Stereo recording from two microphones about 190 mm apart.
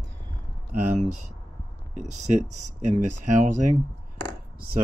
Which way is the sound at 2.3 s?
40° right (ahead or behind).